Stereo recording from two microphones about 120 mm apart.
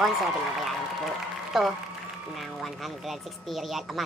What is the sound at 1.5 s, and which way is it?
Speech, centre (ahead or behind).